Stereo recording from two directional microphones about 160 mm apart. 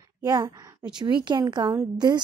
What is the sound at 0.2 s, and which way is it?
A woman's voice, 20° right (ahead or behind).